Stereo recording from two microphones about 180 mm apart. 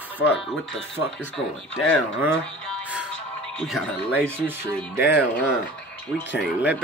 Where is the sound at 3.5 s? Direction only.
5° left (ahead or behind).